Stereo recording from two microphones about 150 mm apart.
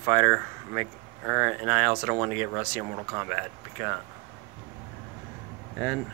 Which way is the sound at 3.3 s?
10° right (ahead or behind).